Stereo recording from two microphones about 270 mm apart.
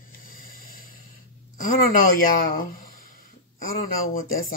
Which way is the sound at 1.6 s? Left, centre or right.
Left.